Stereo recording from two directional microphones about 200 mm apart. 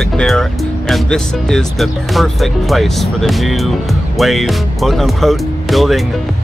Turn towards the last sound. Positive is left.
turn(degrees=0)  # may be behind; listen again after turning